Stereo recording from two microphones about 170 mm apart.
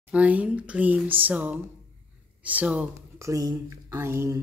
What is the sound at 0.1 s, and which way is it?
Speech, 10° right (ahead or behind).